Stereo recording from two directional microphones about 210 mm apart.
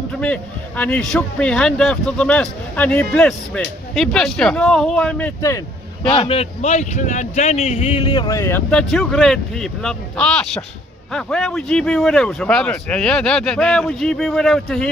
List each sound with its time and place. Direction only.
0.2 s a man's voice: 5° left (ahead or behind)
6.0 s a man's voice: 25° left (ahead or behind); by 14.9 s centre (ahead or behind)